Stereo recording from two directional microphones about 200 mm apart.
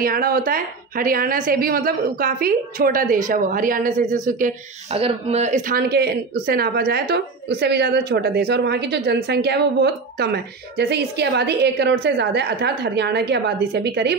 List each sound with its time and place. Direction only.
0.0 s a woman's voice: 45° right (ahead or behind)